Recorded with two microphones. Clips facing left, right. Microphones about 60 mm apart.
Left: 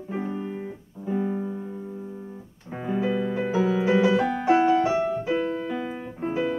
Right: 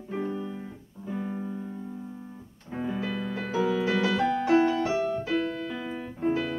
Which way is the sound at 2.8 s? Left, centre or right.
Left.